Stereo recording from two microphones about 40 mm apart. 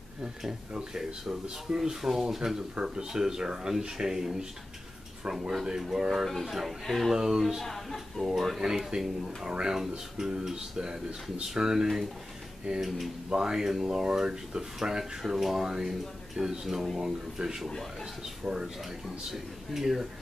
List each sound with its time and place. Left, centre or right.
1.9 s speech: centre
2.7 s speech: right; by 7.2 s centre
7.2 s speech: centre
7.6 s speech: centre
8.2 s speech: centre
10.5 s speech: right
12.8 s speech: centre
13.3 s speech: centre
19.3 s speech: centre